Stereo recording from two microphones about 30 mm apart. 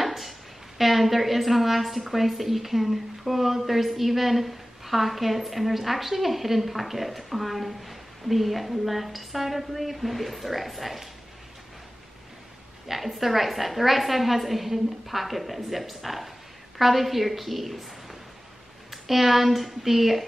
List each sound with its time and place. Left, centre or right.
0.0 s a sound: centre
0.7 s a woman's voice: centre
12.8 s a woman's voice: centre